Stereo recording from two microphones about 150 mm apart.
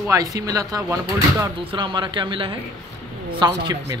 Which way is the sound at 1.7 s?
30° right (ahead or behind).